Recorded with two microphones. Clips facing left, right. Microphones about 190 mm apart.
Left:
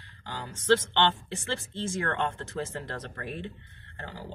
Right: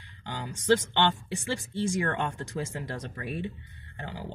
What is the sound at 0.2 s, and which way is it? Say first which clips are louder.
Speech: right 2 dB; 15° right (ahead or behind).